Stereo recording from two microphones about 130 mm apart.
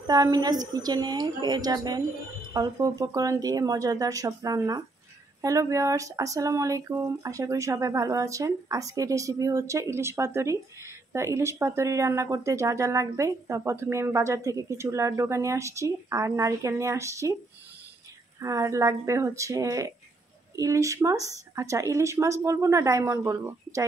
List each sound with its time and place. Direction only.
0.0 s a woman's voice: 30° right (ahead or behind)
18.4 s speech: 25° right (ahead or behind)